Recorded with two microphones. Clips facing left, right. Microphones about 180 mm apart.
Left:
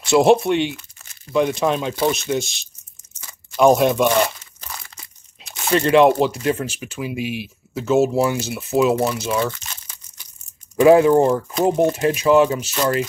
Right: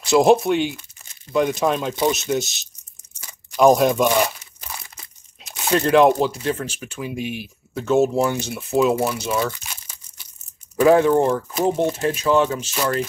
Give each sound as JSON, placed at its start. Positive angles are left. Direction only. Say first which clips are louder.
{"t": 0.0, "sound": "speech", "louder": "left 1 dB", "side_deg": 0}
{"t": 2.0, "sound": "speech", "louder": "even", "side_deg": -15}
{"t": 2.3, "sound": "speech", "louder": "even", "side_deg": -5}
{"t": 3.5, "sound": "crumpling", "louder": "even", "side_deg": 0}
{"t": 5.4, "sound": "speech", "louder": "left 1 dB", "side_deg": 0}
{"t": 10.8, "sound": "speech", "louder": "left 3 dB", "side_deg": 10}